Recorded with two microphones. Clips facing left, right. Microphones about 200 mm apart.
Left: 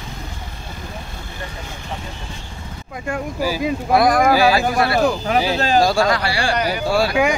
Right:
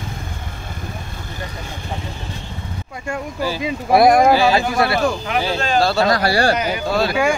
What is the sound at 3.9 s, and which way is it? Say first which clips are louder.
Speech: right 4 dB; 25° right (ahead or behind).